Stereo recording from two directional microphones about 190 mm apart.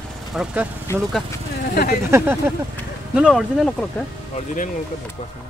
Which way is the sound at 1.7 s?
55° left (ahead or behind).